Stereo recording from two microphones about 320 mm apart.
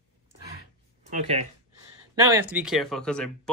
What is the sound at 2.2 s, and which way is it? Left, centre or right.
Speech, centre.